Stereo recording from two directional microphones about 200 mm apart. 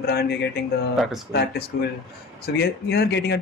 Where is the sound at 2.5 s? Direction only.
55° left (ahead or behind).